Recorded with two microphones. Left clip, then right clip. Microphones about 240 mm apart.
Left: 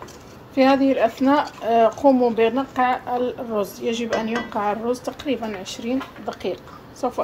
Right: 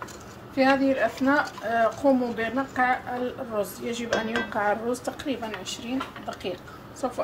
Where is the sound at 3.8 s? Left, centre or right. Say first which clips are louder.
Left 7 dB; right.